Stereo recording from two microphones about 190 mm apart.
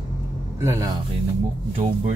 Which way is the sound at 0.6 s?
15° right (ahead or behind).